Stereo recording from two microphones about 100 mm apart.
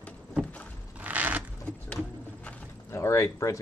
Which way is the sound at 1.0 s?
15° right (ahead or behind).